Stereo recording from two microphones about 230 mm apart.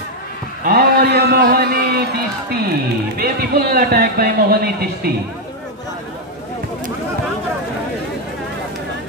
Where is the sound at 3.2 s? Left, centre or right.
Right.